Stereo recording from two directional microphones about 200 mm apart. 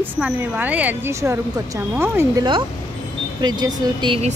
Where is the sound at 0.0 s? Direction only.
10° right (ahead or behind).